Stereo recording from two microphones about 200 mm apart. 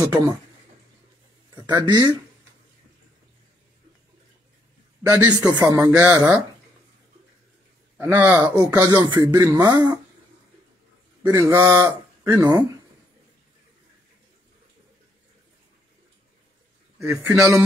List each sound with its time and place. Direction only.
0.0 s speech: 15° right (ahead or behind)
1.5 s speech: 20° right (ahead or behind)
5.0 s speech: 15° right (ahead or behind)
8.0 s speech: 15° right (ahead or behind)
11.2 s speech: 20° right (ahead or behind)
17.0 s speech: 10° right (ahead or behind)